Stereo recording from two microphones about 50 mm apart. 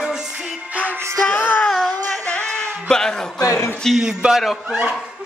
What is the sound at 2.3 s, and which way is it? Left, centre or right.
Bleat, left.